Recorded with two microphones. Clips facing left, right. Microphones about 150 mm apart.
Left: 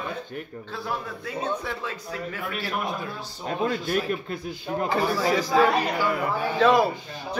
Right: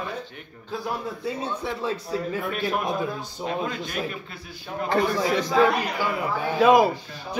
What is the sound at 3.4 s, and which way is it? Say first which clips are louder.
Speech: left 3 dB; 45° left (ahead or behind).